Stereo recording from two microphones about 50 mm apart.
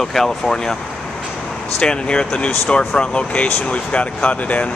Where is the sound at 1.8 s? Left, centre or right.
Centre.